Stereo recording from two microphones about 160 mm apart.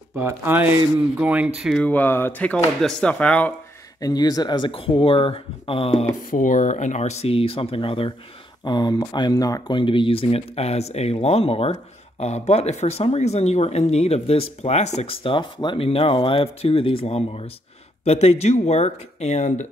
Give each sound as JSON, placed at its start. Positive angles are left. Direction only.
{"t": 0.1, "sound": "speech", "side_deg": -15}
{"t": 1.8, "sound": "speech", "side_deg": 10}
{"t": 4.0, "sound": "speech", "side_deg": 25}
{"t": 6.3, "sound": "speech", "side_deg": 55}